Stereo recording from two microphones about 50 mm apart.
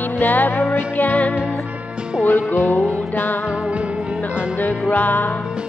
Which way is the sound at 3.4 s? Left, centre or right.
Centre.